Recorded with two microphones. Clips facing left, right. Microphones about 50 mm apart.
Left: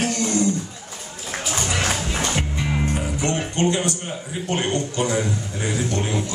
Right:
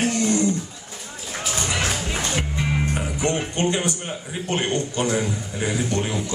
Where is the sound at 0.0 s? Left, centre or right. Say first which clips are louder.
Right 1 dB; centre.